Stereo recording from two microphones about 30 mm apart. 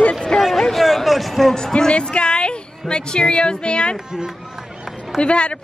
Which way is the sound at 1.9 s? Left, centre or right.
Left.